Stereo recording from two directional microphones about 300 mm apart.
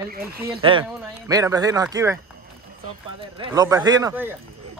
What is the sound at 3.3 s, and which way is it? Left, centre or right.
A man's voice, centre.